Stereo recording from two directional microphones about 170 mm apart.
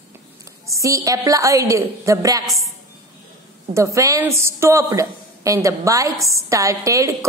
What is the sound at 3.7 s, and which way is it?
A woman's voice, 20° right (ahead or behind).